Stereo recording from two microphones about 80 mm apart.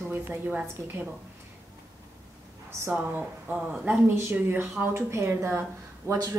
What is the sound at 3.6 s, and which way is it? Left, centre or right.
A woman's voice, centre.